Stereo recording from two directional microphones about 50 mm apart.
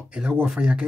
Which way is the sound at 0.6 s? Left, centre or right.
Centre.